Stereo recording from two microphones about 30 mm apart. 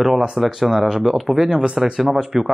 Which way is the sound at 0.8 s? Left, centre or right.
Right.